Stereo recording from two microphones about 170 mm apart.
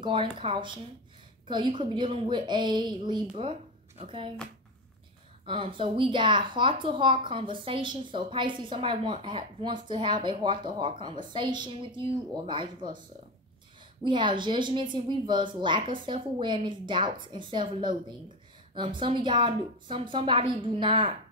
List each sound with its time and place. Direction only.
0.0 s speech: 30° right (ahead or behind)
5.5 s speech: 30° right (ahead or behind)
14.0 s speech: 30° right (ahead or behind)